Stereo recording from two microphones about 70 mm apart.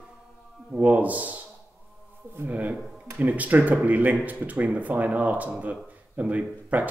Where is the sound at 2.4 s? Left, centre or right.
Right.